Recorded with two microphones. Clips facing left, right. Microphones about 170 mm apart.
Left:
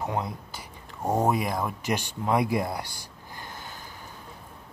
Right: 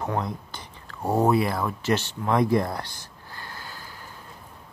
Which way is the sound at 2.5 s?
10° left (ahead or behind).